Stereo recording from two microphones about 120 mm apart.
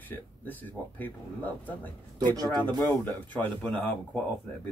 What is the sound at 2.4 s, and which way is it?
Speech, 35° right (ahead or behind).